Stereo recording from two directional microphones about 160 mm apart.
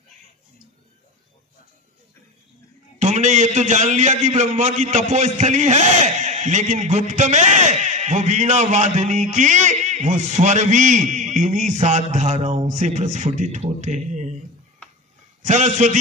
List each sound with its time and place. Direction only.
3.0 s a man's voice: 50° right (ahead or behind)
15.4 s a man's voice: 50° right (ahead or behind)